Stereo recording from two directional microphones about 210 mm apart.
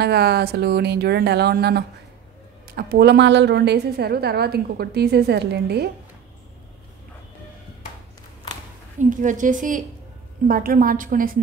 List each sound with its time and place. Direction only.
0.0 s a woman's voice: 50° right (ahead or behind)
9.1 s a woman's voice: 40° right (ahead or behind)